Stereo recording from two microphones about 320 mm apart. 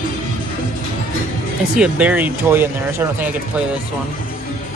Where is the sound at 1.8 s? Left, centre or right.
Centre.